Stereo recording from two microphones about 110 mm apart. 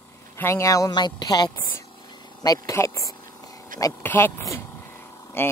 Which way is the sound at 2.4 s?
30° left (ahead or behind).